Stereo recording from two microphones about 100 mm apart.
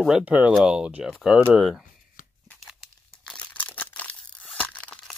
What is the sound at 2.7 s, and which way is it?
Crumpling, centre (ahead or behind).